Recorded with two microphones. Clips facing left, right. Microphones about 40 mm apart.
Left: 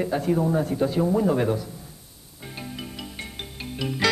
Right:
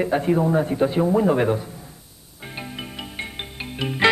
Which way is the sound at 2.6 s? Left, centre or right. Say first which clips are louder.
Right 2 dB; right.